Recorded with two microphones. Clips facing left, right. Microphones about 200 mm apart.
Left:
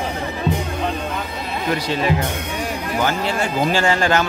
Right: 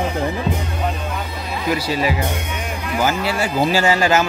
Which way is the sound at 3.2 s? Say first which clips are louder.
Right 1 dB; 5° right (ahead or behind).